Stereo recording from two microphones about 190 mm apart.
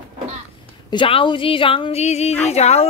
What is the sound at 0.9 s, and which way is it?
Speech, 25° left (ahead or behind).